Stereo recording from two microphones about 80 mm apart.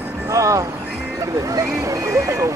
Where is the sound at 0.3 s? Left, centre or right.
Right.